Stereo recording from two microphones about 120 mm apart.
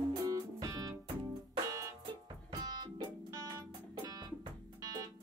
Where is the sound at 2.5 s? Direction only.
30° right (ahead or behind).